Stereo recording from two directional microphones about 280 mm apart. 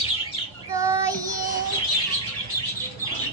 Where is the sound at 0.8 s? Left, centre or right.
Centre.